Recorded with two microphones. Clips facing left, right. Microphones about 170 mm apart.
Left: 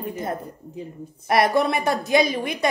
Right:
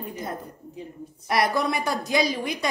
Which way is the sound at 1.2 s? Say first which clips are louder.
Left 4 dB; 60° left (ahead or behind).